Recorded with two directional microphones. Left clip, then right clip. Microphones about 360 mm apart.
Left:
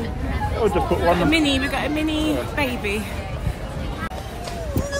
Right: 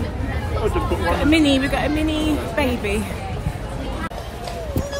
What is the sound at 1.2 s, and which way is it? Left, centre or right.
A woman's voice, centre.